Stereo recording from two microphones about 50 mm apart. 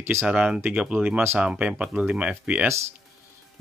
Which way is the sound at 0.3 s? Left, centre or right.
Centre.